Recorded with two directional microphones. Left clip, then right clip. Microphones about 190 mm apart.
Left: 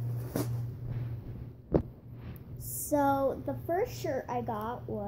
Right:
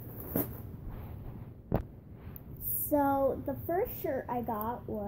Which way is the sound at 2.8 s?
10° left (ahead or behind).